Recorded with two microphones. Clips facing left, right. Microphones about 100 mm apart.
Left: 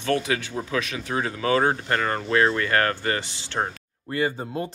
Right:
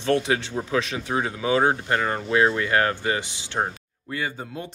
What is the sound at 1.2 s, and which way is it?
Speech, 15° right (ahead or behind).